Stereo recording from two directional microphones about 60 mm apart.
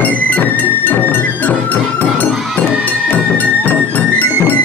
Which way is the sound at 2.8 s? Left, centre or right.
Left.